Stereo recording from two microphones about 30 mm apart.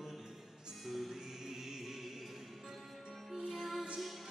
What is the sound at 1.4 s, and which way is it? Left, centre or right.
Music, centre.